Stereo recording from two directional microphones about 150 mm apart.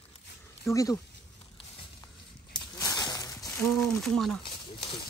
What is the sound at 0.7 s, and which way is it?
Speech, 20° left (ahead or behind).